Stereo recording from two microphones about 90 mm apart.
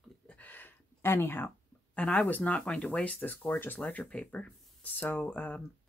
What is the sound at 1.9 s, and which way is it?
Speech, 15° left (ahead or behind).